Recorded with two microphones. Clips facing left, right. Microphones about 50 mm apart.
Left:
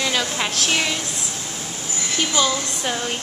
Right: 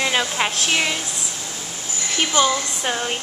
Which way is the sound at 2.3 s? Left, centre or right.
Right.